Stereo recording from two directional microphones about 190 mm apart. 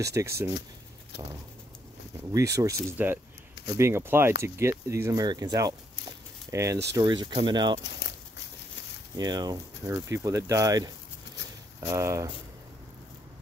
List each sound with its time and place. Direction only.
0.0 s speech: 15° right (ahead or behind)
2.3 s speech: 15° right (ahead or behind)
9.1 s speech: 20° right (ahead or behind)